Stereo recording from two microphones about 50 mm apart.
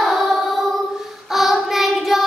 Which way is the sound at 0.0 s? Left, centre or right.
Centre.